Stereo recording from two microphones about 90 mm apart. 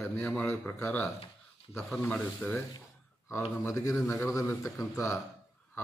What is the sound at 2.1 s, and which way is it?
Speech, 20° left (ahead or behind).